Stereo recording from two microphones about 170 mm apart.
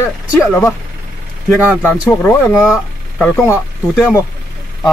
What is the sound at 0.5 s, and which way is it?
Speech, 15° left (ahead or behind).